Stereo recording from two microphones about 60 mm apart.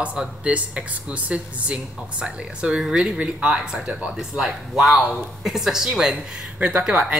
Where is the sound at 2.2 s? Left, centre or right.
Centre.